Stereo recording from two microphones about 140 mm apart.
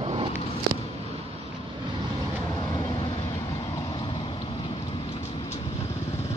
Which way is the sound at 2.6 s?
35° left (ahead or behind).